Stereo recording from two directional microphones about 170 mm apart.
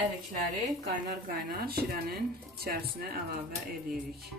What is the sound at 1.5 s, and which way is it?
Speech, 65° right (ahead or behind).